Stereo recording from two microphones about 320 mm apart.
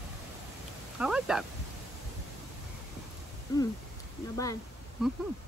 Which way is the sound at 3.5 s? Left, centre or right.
Centre.